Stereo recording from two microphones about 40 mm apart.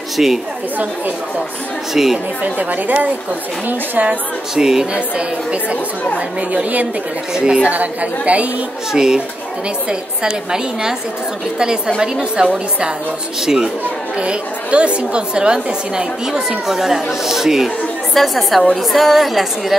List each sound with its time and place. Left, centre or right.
0.2 s a woman's voice: centre
2.0 s a woman's voice: centre
2.4 s a woman's voice: right
4.6 s a woman's voice: centre
4.9 s a woman's voice: right
7.3 s a woman's voice: right
7.7 s a woman's voice: right
8.9 s a woman's voice: centre
14.1 s a woman's voice: right; by 17.6 s centre
18.1 s a woman's voice: centre